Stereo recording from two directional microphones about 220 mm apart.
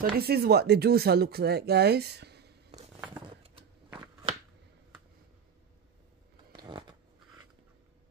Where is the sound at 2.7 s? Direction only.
30° right (ahead or behind).